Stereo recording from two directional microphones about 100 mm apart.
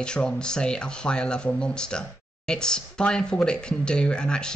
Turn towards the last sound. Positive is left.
turn(degrees=10)  # may be behind; listen again after turning